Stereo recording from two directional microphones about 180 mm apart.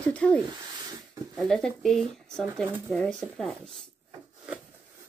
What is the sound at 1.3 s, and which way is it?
Speech, centre (ahead or behind).